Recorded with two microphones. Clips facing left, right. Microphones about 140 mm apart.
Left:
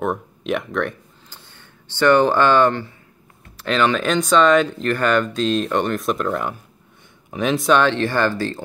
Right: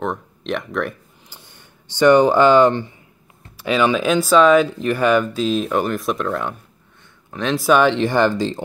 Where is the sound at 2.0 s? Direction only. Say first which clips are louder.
Right 3 dB; 15° right (ahead or behind); by 7.5 s 10° left (ahead or behind).